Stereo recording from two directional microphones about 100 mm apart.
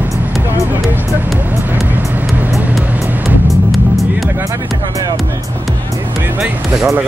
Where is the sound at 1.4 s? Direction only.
20° right (ahead or behind).